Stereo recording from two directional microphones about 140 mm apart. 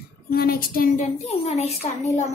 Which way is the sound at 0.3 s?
90° left.